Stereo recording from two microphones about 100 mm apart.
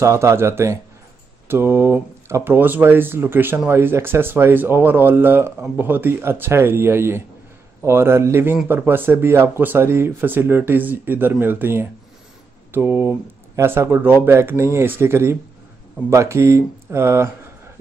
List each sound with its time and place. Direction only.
0.0 s speech: 30° right (ahead or behind)